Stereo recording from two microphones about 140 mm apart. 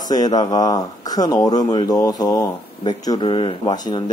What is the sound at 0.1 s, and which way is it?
A man's voice, 30° left (ahead or behind).